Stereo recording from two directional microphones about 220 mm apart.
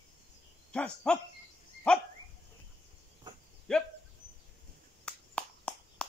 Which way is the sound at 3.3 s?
20° right (ahead or behind).